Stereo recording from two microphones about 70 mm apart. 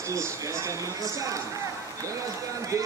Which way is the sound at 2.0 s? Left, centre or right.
Right.